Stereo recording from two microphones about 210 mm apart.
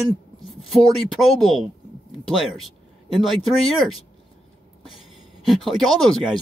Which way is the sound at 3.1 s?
Centre (ahead or behind).